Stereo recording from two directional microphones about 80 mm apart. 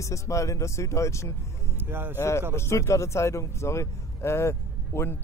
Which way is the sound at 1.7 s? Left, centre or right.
Right.